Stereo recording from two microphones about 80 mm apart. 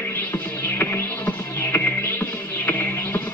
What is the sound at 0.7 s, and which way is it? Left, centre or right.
Music, left.